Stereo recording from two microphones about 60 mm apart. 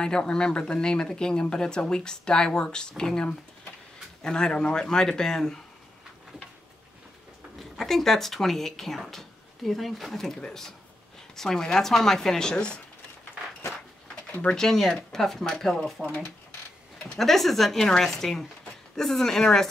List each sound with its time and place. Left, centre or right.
0.0 s speech: centre
7.5 s speech: centre
14.4 s speech: centre
17.2 s speech: centre